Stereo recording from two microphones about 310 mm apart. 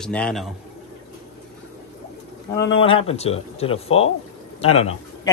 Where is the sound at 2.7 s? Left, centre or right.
Centre.